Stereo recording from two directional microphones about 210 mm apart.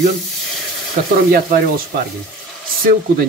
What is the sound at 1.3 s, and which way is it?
Speech, 45° right (ahead or behind).